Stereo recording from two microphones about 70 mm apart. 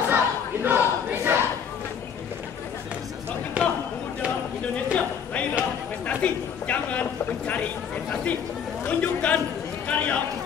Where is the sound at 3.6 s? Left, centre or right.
Centre.